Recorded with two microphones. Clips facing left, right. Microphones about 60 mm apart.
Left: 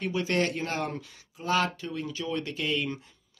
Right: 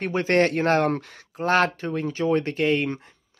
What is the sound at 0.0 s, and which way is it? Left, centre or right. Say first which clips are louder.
Speech: right 7 dB; right.